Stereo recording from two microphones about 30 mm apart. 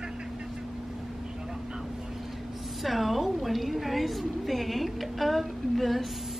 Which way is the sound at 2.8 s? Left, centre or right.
Centre.